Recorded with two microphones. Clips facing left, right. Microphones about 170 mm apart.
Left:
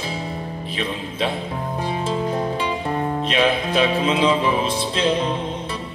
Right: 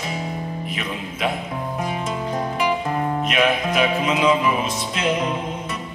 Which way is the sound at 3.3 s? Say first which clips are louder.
Left 1 dB; 30° left (ahead or behind).